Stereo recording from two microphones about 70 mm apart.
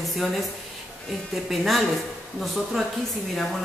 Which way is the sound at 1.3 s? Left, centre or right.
Centre.